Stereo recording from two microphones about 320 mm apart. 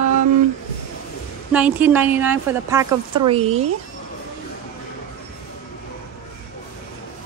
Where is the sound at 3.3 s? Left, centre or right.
Centre.